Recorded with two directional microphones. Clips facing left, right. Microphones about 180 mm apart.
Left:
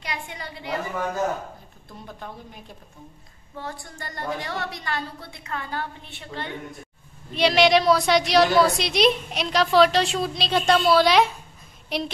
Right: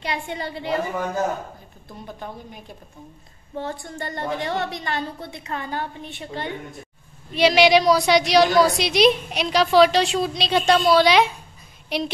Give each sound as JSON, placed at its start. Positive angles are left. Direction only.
{"t": 0.0, "sound": "a woman's voice", "side_deg": -30}
{"t": 3.5, "sound": "a woman's voice", "side_deg": -25}
{"t": 7.3, "sound": "a woman's voice", "side_deg": 0}